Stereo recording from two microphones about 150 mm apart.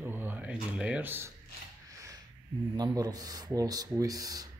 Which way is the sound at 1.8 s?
25° right (ahead or behind).